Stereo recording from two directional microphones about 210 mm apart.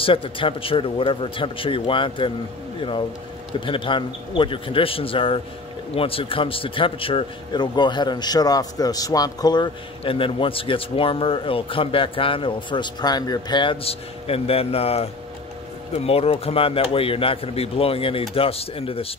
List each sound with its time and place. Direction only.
0.0 s a man's voice: 25° left (ahead or behind)
3.5 s a man's voice: 25° left (ahead or behind)